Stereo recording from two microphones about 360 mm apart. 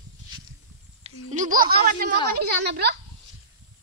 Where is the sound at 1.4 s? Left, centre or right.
Right.